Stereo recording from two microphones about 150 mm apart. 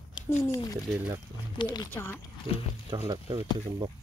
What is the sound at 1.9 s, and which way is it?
Speech, 15° left (ahead or behind).